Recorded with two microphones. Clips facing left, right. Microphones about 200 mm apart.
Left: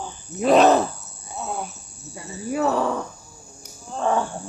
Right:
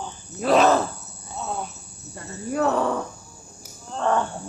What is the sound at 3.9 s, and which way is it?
Wild animals, 10° left (ahead or behind).